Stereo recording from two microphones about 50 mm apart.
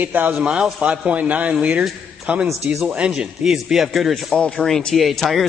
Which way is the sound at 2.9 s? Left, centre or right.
Centre.